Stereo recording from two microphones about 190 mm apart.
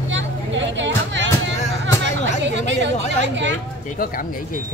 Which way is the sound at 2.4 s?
70° right (ahead or behind).